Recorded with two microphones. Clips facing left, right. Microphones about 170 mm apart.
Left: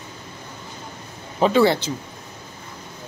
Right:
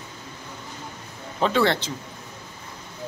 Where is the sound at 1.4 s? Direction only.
5° left (ahead or behind).